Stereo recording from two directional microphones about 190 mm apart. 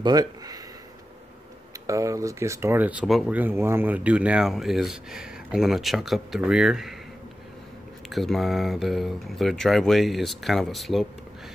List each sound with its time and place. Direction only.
0.0 s speech: 20° right (ahead or behind)
1.9 s speech: 15° right (ahead or behind)
8.1 s speech: centre (ahead or behind)